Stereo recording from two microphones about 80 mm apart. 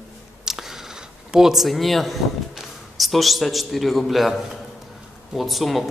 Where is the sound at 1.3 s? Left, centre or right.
Centre.